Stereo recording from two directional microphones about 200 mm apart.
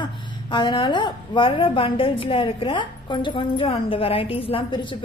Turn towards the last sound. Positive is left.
turn(degrees=25)  # may be behind; listen again after turning